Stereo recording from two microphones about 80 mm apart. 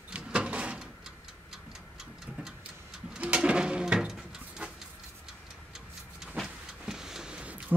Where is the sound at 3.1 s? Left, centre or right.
Centre.